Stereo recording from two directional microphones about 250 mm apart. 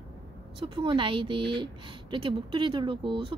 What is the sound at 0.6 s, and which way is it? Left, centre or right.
A woman's voice, centre.